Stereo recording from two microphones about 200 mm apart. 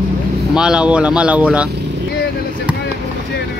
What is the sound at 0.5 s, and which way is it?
Speech, 5° right (ahead or behind).